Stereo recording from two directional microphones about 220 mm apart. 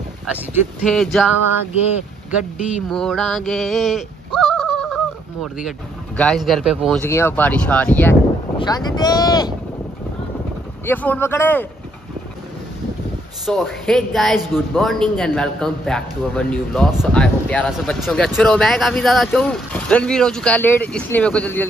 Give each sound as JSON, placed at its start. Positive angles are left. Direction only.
{"t": 0.8, "sound": "a man's voice", "side_deg": 0}
{"t": 2.9, "sound": "a sound", "side_deg": 0}
{"t": 7.0, "sound": "speech", "side_deg": 10}
{"t": 10.9, "sound": "speech", "side_deg": 10}
{"t": 13.5, "sound": "a man's voice", "side_deg": 0}